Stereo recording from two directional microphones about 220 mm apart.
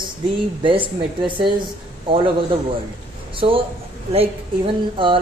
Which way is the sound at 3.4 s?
25° right (ahead or behind).